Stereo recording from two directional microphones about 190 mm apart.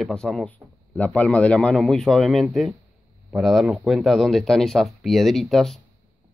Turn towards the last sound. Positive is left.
turn(degrees=0)  # may be behind; listen again after turning